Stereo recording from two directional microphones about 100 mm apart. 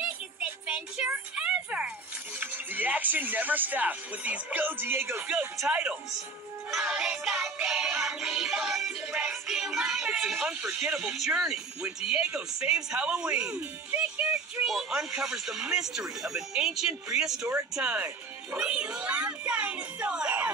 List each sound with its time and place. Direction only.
0.4 s music: 5° right (ahead or behind)
1.1 s a sound: 10° right (ahead or behind)
2.4 s speech: 20° right (ahead or behind)
6.7 s music: 10° right (ahead or behind)
17.7 s speech: 10° right (ahead or behind)